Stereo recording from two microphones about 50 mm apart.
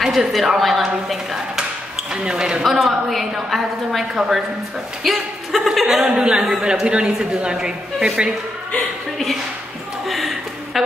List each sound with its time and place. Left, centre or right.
0.0 s a woman's voice: centre
2.2 s a woman's voice: centre
6.0 s a woman's voice: centre
10.0 s a sound: centre